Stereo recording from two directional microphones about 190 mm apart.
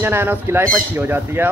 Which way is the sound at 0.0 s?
10° right (ahead or behind).